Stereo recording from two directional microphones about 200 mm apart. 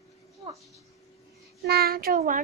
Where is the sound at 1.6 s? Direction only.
50° right (ahead or behind).